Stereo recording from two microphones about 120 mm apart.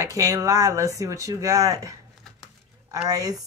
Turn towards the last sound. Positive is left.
turn(degrees=-30)  # may be behind; listen again after turning